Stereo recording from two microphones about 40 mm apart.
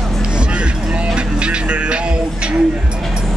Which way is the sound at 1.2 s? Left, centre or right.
Right.